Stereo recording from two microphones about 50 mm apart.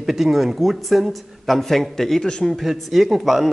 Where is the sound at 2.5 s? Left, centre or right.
Centre.